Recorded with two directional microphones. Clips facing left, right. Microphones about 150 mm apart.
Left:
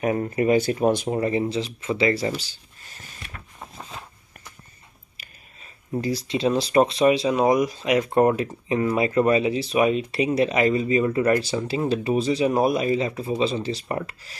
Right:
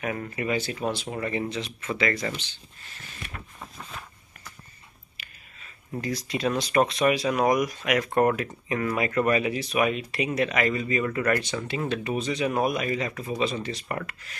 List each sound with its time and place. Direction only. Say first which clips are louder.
0.0 s speech: left 8 dB; 35° left (ahead or behind)
1.1 s speech: left 6 dB; 35° left (ahead or behind)
5.9 s speech: left 5 dB; 30° left (ahead or behind)